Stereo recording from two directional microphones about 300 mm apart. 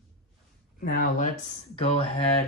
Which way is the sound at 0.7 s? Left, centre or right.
Left.